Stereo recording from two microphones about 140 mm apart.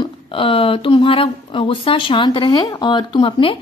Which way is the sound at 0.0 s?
40° left (ahead or behind).